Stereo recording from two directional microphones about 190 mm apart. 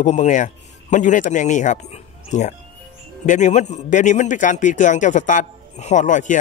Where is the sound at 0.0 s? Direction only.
40° left (ahead or behind).